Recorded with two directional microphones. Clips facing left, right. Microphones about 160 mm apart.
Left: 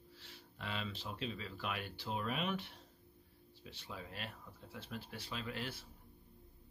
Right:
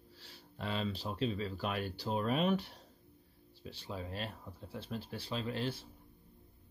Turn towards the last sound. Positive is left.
turn(degrees=-30)  # may be behind; listen again after turning